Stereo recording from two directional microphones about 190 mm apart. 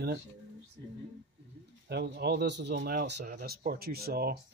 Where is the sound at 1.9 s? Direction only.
60° right (ahead or behind).